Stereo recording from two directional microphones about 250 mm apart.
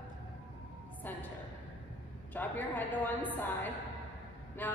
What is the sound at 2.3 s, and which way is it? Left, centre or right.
A woman's voice, centre.